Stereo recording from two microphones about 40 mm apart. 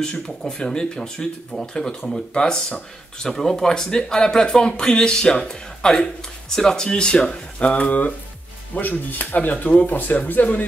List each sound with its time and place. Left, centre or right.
0.5 s speech: centre
7.7 s speech: left